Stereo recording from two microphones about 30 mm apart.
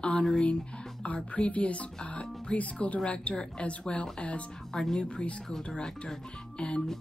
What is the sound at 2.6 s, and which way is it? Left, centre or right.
Speech, left.